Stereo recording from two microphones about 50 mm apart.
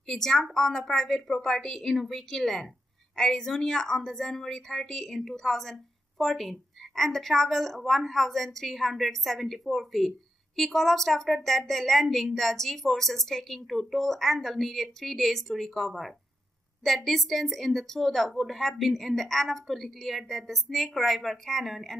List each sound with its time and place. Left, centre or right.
0.0 s a woman's voice: centre